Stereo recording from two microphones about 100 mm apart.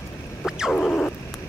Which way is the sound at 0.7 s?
5° left (ahead or behind).